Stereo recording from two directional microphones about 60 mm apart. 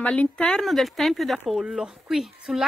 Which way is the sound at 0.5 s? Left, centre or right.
Centre.